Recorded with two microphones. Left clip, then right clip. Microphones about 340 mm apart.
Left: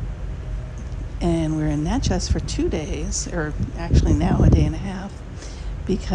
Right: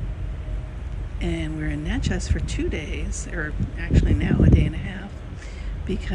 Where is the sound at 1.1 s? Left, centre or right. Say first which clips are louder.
Left 7 dB; centre.